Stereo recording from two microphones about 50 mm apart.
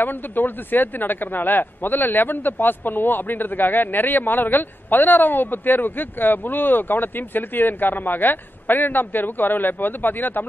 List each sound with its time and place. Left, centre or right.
0.0 s speech: left